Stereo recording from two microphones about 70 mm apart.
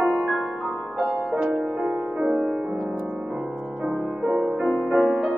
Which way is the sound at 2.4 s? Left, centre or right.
Centre.